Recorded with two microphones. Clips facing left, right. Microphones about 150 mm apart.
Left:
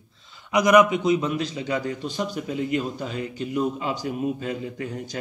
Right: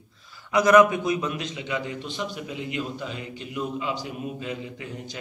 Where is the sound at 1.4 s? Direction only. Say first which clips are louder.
Left 4 dB; 35° left (ahead or behind).